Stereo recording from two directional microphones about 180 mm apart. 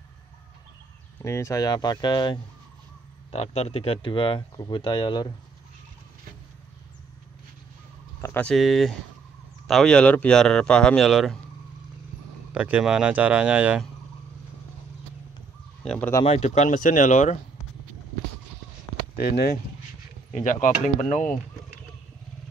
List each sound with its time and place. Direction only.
1.2 s speech: 15° left (ahead or behind)
8.2 s speech: 10° left (ahead or behind)
12.5 s speech: 5° right (ahead or behind)
15.8 s speech: 5° left (ahead or behind)
16.3 s speech: 40° left (ahead or behind)
19.1 s speech: 60° left (ahead or behind)
20.3 s speech: 45° left (ahead or behind)